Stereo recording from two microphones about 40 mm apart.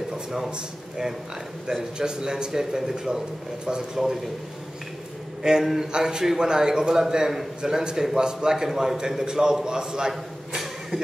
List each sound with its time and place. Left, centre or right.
1.7 s a man's voice: centre
5.4 s a man's voice: centre